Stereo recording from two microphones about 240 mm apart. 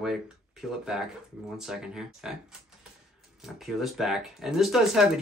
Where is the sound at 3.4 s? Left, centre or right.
Centre.